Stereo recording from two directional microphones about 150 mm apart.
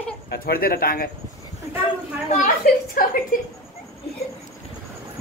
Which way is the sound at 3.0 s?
65° left (ahead or behind).